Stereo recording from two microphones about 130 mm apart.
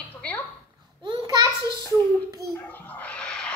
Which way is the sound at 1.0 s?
40° right (ahead or behind).